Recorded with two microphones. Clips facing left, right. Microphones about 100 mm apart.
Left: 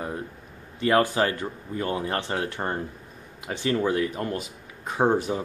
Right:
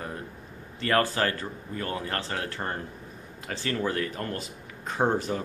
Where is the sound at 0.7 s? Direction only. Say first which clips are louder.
Left 4 dB; 20° left (ahead or behind).